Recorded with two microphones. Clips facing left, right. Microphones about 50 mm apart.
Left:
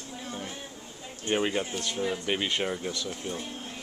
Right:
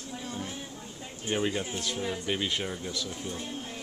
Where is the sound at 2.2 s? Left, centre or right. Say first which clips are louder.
Left 2 dB; left.